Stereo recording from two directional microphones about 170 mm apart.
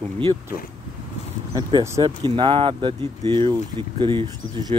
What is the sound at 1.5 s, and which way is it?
Speech, 20° right (ahead or behind).